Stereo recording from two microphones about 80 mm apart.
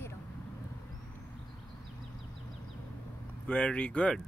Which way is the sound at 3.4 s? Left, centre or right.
Centre.